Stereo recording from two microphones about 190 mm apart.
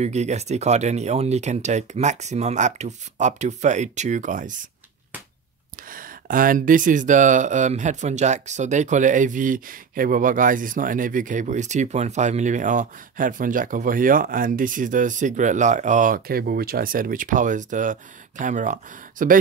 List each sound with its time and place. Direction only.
0.0 s speech: 35° right (ahead or behind)
5.9 s speech: 45° right (ahead or behind)